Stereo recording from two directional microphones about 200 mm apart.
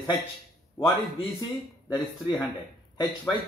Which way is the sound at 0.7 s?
25° left (ahead or behind).